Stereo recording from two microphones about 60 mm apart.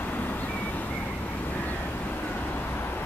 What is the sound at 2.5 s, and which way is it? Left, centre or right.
Vehicle, left.